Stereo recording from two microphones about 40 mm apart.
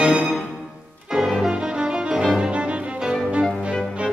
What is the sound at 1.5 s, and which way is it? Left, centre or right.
Music, right.